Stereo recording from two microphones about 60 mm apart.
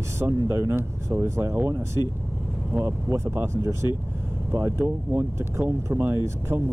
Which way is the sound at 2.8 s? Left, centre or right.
Right.